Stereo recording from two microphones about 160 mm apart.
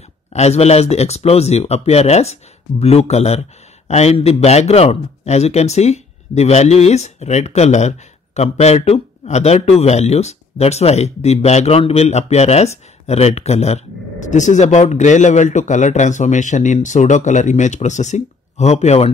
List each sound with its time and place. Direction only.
0.3 s speech: 45° left (ahead or behind)